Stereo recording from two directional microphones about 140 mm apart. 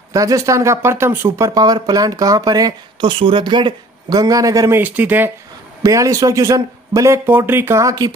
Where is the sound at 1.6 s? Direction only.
30° right (ahead or behind); by 5.3 s 15° right (ahead or behind).